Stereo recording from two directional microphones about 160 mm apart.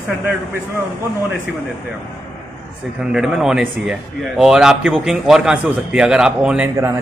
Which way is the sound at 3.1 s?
5° right (ahead or behind).